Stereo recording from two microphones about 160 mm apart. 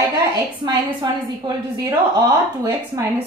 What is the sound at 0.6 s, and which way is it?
A woman's voice, 25° right (ahead or behind).